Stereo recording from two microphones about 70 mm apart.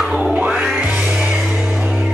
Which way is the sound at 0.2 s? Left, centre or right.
Right.